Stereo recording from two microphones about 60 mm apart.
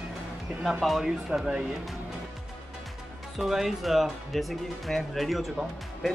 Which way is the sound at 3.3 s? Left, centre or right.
Centre.